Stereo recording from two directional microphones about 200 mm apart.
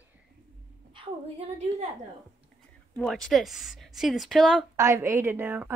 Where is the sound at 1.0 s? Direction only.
30° right (ahead or behind).